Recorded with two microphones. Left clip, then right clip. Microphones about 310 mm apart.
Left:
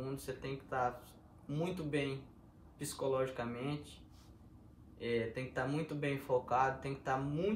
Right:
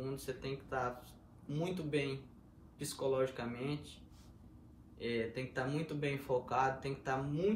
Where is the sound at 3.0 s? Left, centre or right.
Centre.